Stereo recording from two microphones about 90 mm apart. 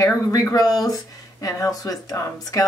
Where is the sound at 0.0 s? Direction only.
40° left (ahead or behind).